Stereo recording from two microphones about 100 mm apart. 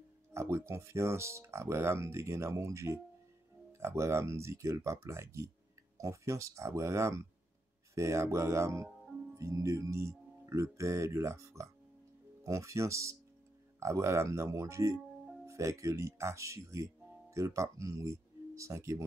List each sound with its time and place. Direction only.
0.3 s speech: 30° right (ahead or behind)